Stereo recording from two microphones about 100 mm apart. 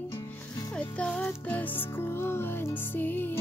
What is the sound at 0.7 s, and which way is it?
Music, 10° left (ahead or behind).